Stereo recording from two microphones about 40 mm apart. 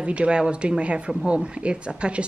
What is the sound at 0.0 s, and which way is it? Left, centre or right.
Speech, right.